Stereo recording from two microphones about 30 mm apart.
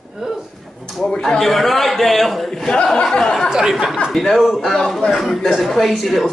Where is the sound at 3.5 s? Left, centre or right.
Centre.